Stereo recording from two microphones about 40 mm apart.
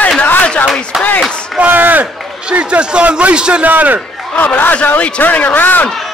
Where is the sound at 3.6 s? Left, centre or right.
Right.